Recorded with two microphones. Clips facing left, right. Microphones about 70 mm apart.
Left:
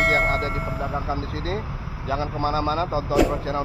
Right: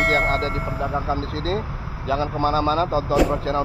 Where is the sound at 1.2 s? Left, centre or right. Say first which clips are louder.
Right 3 dB; right.